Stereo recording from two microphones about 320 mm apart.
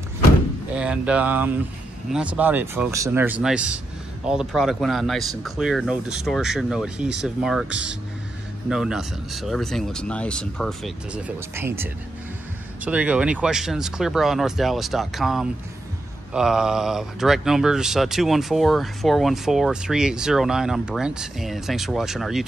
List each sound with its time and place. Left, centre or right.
0.7 s speech: centre